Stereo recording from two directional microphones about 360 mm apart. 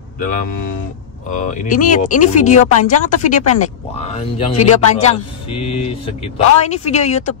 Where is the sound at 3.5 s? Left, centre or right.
Centre.